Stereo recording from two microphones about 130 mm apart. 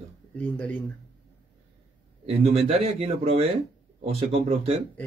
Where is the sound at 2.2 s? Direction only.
50° right (ahead or behind).